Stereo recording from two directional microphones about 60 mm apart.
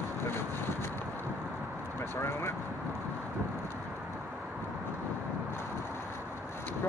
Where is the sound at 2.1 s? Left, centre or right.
Left.